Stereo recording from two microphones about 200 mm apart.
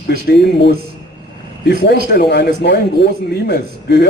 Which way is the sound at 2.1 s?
55° left (ahead or behind).